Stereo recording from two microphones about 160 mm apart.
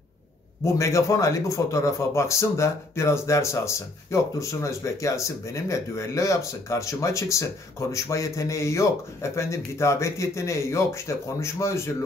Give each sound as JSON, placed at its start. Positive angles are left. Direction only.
{"t": 0.7, "sound": "speech", "side_deg": 20}